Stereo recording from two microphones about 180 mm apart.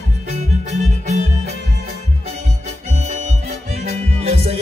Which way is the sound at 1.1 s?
40° right (ahead or behind).